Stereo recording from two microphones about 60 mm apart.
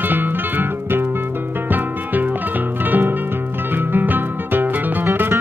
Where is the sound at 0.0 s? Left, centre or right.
Right.